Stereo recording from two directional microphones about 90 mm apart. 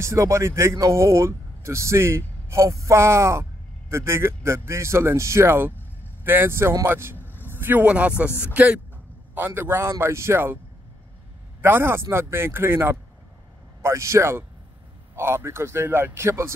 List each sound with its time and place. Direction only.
0.0 s speech: 30° right (ahead or behind)
7.2 s vehicle: 25° left (ahead or behind)
7.5 s speech: 20° right (ahead or behind)
11.6 s speech: 25° right (ahead or behind)